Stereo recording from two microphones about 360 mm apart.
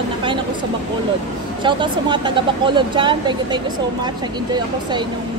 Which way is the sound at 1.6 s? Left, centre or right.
Centre.